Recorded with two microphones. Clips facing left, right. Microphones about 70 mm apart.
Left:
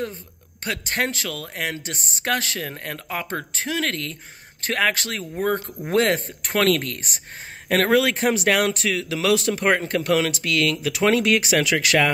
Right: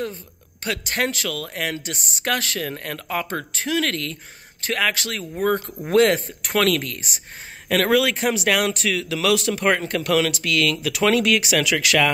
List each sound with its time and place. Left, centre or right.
0.7 s speech: left
4.6 s speech: left
7.6 s speech: left